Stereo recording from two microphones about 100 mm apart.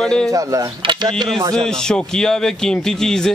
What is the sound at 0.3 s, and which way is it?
Speech, 35° right (ahead or behind).